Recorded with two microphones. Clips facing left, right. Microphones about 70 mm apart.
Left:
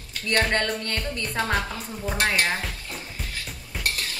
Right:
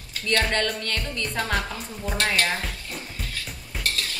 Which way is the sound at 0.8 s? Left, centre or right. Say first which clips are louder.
Even; left.